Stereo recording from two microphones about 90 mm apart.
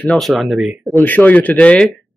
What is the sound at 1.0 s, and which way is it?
Speech, 20° left (ahead or behind).